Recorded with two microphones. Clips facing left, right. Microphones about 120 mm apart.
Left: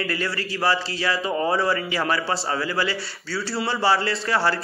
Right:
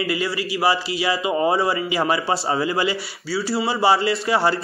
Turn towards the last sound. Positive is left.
turn(degrees=-20)  # may be behind; listen again after turning